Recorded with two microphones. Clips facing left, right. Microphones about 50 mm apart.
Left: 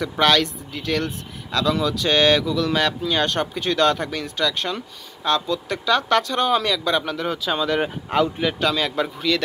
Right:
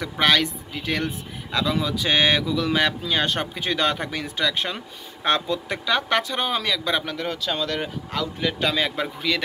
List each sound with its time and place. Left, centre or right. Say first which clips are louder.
0.0 s speech: left 2 dB; centre
5.2 s speech: left 1 dB; right; by 7.8 s centre
7.8 s a man's voice: left 7 dB; left
8.5 s speech: left 1 dB; centre